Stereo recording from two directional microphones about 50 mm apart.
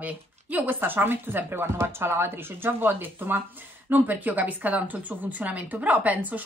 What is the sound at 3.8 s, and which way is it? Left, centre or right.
A woman's voice, right.